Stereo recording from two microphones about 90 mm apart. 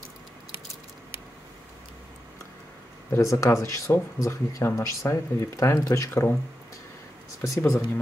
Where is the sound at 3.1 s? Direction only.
35° left (ahead or behind).